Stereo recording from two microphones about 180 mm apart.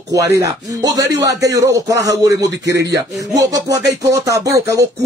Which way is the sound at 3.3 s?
20° right (ahead or behind).